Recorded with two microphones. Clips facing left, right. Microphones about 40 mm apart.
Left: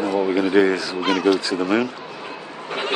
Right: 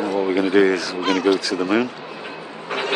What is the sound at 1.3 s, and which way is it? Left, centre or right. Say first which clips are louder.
Speech: even; centre.